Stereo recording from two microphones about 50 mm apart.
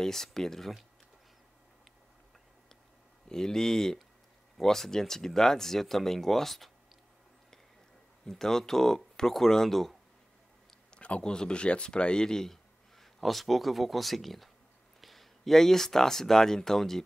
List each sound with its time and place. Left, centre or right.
0.0 s speech: centre
3.3 s speech: centre
8.3 s speech: centre
11.0 s speech: left; by 17.0 s centre